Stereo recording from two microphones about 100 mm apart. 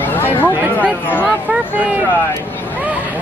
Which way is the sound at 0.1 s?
20° left (ahead or behind).